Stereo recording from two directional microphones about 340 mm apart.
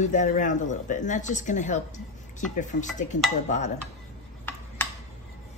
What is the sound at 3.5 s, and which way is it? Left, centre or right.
Speech, left.